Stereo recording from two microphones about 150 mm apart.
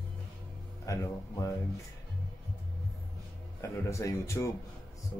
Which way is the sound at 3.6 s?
20° left (ahead or behind).